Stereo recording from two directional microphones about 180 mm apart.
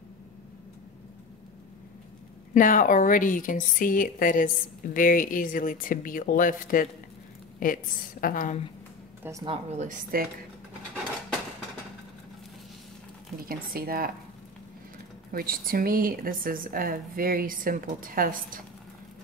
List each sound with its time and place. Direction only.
2.5 s a woman's voice: 50° left (ahead or behind)
9.2 s speech: 15° right (ahead or behind)
9.5 s a woman's voice: 45° right (ahead or behind)
13.5 s speech: 55° right (ahead or behind)
15.3 s a woman's voice: 55° right (ahead or behind)